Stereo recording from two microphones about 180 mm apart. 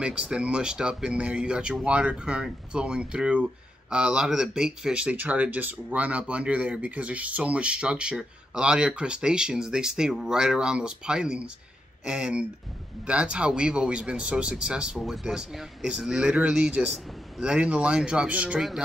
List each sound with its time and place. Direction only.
0.0 s speech: 5° right (ahead or behind)